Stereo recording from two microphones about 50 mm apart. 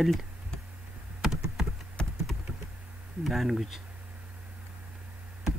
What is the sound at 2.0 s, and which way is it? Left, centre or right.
Typing, centre.